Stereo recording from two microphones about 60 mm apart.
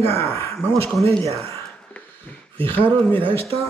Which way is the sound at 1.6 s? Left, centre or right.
Centre.